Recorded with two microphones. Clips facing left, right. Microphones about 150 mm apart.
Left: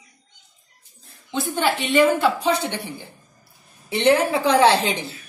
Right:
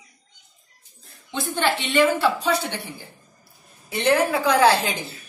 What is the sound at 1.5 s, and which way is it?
A woman's voice, 10° left (ahead or behind).